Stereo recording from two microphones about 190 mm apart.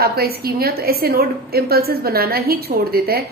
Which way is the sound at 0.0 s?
55° right (ahead or behind).